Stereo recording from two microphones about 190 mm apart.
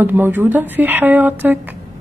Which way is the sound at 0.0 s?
10° right (ahead or behind).